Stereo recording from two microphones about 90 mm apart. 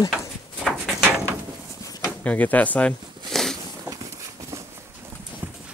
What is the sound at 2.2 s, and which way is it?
Speech, 20° left (ahead or behind).